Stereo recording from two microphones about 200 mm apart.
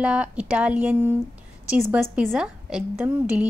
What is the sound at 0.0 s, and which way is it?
A woman's voice, 5° right (ahead or behind).